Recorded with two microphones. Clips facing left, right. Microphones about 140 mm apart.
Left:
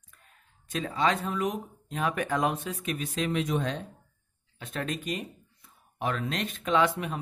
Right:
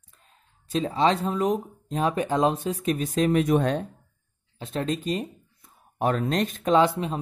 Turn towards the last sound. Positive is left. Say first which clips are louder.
# right 5 dB
turn(degrees=-30)  # may be behind; listen again after turning